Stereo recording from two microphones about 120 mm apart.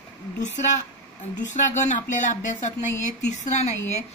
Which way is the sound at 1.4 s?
90° left.